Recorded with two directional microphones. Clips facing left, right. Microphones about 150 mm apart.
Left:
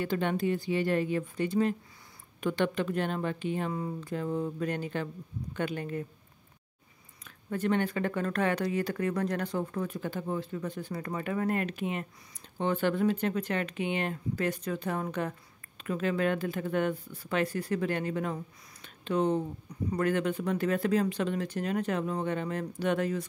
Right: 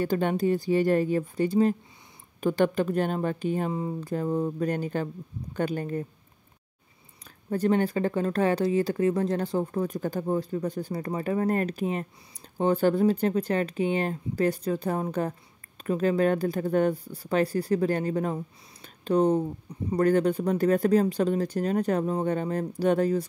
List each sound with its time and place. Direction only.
0.0 s speech: 40° right (ahead or behind)
7.2 s speech: 35° right (ahead or behind)